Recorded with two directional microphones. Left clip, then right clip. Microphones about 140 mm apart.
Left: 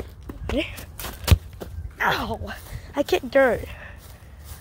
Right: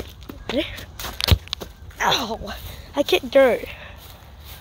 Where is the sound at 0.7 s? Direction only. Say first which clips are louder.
Right 6 dB; 90° left.